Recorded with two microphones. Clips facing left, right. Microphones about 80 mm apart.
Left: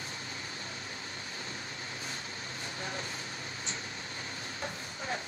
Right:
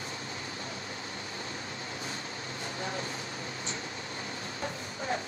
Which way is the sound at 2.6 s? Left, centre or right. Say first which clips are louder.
Right 4 dB; right.